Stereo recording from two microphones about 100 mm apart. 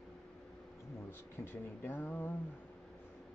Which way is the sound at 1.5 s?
20° left (ahead or behind).